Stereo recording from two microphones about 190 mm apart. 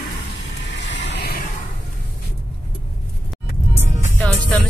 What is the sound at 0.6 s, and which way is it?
Vehicle, 70° left (ahead or behind).